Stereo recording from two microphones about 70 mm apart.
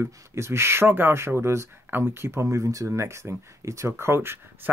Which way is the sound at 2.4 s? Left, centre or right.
Right.